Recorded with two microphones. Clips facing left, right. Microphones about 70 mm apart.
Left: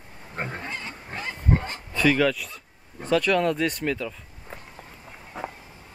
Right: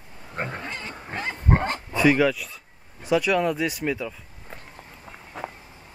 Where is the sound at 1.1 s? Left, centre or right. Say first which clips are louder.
Right 2 dB; right.